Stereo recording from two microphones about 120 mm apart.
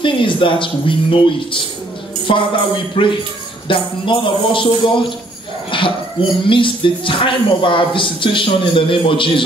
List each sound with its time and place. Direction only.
0.0 s speech: 45° left (ahead or behind)